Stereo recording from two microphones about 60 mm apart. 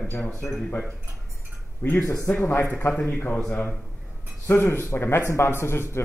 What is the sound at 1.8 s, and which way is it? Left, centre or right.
Speech, left.